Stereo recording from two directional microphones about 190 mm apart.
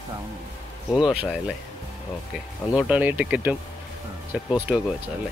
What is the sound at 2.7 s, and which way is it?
Speech, 5° right (ahead or behind).